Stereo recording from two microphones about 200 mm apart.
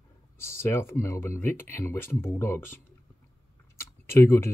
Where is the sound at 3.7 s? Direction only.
15° left (ahead or behind).